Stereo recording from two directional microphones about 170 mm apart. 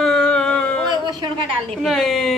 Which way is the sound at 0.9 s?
25° right (ahead or behind).